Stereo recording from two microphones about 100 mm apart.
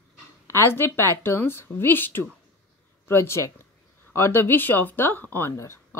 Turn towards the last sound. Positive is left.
turn(degrees=30)  # may be behind; listen again after turning